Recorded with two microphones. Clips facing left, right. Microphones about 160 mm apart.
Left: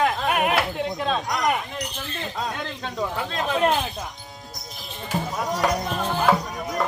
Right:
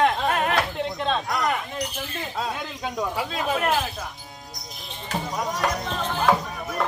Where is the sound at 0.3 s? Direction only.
15° left (ahead or behind).